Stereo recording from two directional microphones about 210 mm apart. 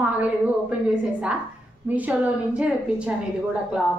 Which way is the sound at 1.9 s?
10° right (ahead or behind).